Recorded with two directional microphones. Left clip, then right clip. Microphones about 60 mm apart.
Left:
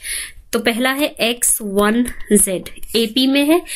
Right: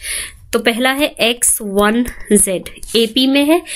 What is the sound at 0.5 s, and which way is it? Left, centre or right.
Speech, right.